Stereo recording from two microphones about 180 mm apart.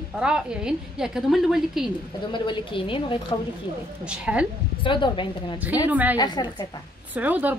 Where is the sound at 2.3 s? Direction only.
25° left (ahead or behind).